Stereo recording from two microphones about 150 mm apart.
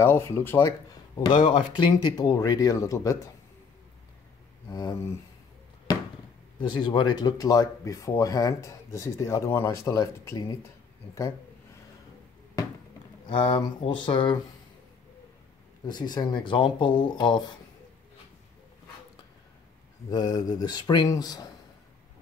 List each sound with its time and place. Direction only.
0.0 s speech: 15° left (ahead or behind)
1.1 s speech: 35° left (ahead or behind)
4.6 s speech: 25° left (ahead or behind)
6.8 s speech: 30° left (ahead or behind)
13.3 s speech: 30° left (ahead or behind)
15.9 s speech: 30° left (ahead or behind)
20.1 s speech: 25° left (ahead or behind)